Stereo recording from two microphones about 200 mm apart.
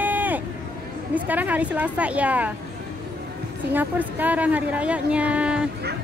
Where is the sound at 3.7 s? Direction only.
10° right (ahead or behind).